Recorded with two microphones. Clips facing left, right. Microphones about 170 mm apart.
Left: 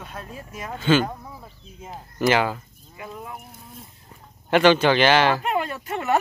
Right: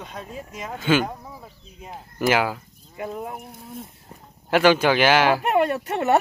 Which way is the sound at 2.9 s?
45° right (ahead or behind).